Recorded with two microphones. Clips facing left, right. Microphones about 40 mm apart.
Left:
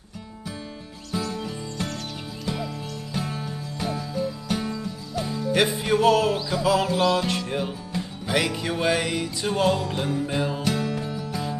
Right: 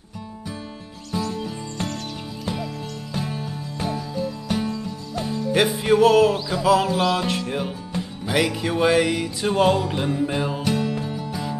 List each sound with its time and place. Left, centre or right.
1.1 s music: centre
11.0 s music: centre